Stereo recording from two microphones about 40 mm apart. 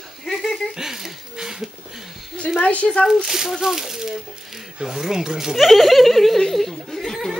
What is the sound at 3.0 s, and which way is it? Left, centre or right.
Speech, centre.